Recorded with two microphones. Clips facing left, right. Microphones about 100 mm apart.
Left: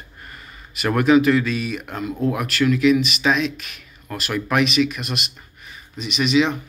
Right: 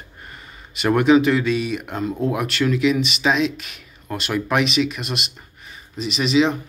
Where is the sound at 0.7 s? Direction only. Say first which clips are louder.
Right 1 dB; 25° right (ahead or behind).